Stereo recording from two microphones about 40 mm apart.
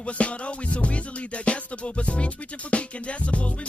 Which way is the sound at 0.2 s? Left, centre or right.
Left.